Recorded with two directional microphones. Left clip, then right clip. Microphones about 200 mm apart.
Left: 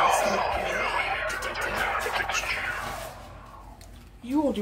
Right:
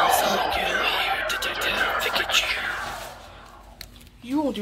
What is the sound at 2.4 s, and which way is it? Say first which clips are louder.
Whispering: right 3 dB; 15° right (ahead or behind).